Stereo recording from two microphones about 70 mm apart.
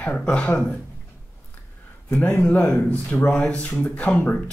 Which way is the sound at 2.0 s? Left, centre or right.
Left.